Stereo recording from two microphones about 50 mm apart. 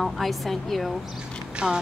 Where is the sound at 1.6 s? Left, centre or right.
Centre.